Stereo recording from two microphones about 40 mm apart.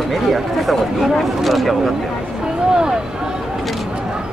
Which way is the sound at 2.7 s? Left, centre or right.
Centre.